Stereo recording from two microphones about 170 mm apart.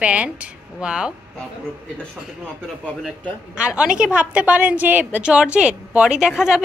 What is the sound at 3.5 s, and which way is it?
A woman's voice, 5° right (ahead or behind).